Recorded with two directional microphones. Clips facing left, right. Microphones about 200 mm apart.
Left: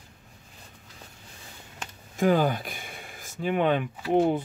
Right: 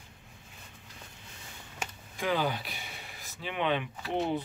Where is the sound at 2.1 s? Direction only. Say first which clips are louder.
Left 8 dB; 45° left (ahead or behind).